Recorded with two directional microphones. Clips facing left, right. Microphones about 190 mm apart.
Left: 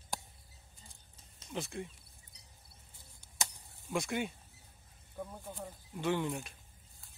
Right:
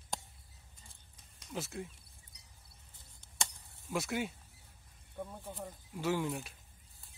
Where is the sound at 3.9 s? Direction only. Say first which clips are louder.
Left 1 dB; 5° right (ahead or behind).